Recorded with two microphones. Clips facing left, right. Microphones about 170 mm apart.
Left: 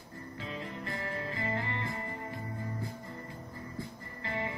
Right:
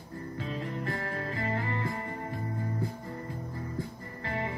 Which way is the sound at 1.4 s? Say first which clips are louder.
Right 4 dB; 40° right (ahead or behind).